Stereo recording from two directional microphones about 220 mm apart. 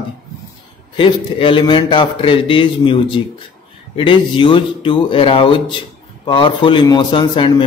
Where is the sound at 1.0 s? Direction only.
25° left (ahead or behind).